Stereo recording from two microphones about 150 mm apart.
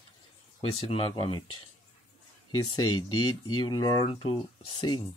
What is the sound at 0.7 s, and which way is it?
Speech, 40° left (ahead or behind).